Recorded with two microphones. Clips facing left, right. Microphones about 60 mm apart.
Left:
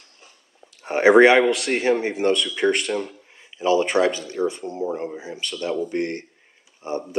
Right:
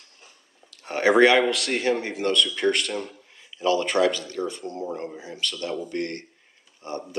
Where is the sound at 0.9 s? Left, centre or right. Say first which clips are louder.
Left 4 dB; centre.